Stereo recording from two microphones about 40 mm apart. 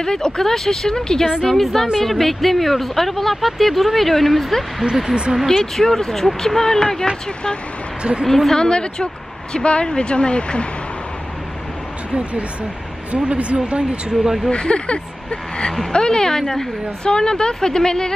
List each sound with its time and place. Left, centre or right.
0.0 s speech: centre
1.5 s speech: centre
5.8 s speech: centre
8.3 s speech: centre
8.5 s speech: left
12.1 s speech: right
14.2 s speech: centre
14.5 s speech: left